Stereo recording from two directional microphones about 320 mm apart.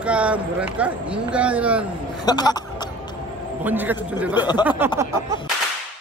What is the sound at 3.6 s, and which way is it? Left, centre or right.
Speech, centre.